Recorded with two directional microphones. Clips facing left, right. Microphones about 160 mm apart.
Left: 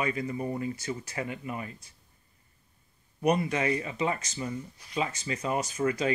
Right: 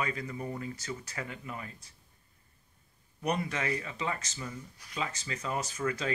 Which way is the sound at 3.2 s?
15° left (ahead or behind).